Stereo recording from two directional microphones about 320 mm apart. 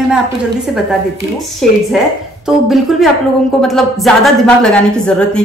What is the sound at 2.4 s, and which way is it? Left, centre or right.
A woman's voice, centre.